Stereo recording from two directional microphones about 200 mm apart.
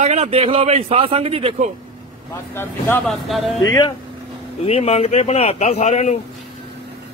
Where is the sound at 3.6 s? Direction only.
20° left (ahead or behind).